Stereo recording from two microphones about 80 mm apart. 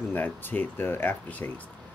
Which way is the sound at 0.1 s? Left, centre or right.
Left.